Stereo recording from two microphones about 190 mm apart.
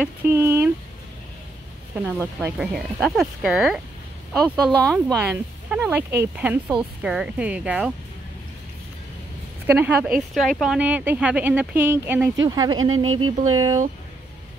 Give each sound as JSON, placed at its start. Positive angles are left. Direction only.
{"t": 0.0, "sound": "speech", "side_deg": -15}
{"t": 2.4, "sound": "speech", "side_deg": 0}
{"t": 9.7, "sound": "speech", "side_deg": -5}
{"t": 12.9, "sound": "speech", "side_deg": -90}
{"t": 13.6, "sound": "speech", "side_deg": -20}